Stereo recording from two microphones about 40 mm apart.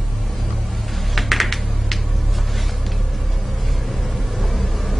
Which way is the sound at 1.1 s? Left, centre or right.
Centre.